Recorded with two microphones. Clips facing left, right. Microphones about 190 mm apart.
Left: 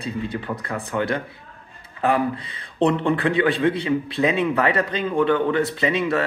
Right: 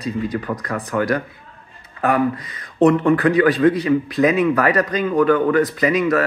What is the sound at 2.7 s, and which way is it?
A man's voice, 25° left (ahead or behind).